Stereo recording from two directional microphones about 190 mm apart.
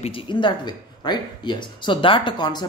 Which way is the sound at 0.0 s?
25° left (ahead or behind).